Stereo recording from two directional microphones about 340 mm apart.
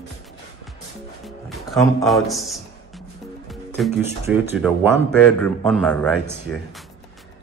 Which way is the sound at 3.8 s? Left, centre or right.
Centre.